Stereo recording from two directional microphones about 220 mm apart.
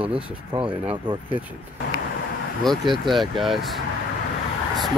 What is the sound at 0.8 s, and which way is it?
Speech, 25° right (ahead or behind).